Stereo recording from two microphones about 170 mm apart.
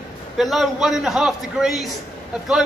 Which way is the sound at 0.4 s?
Centre (ahead or behind).